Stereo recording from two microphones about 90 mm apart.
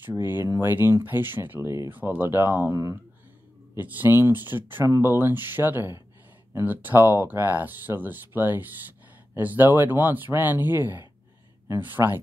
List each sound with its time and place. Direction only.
0.0 s speech: 25° right (ahead or behind)
2.7 s speech: 35° right (ahead or behind)
3.7 s speech: 25° right (ahead or behind)